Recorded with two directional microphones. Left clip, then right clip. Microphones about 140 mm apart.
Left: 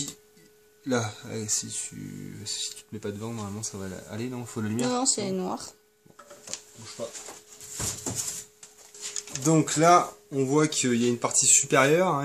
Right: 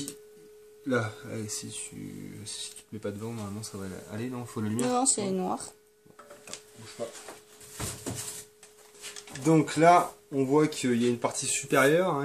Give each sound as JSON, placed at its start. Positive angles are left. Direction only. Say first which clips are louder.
{"t": 0.8, "sound": "speech", "louder": "left 1 dB", "side_deg": 75}
{"t": 2.4, "sound": "speech", "louder": "left 9 dB", "side_deg": 60}
{"t": 4.7, "sound": "speech", "louder": "even", "side_deg": 5}
{"t": 9.4, "sound": "speech", "louder": "even", "side_deg": 65}